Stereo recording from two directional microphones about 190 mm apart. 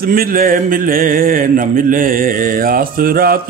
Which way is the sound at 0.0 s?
50° right (ahead or behind).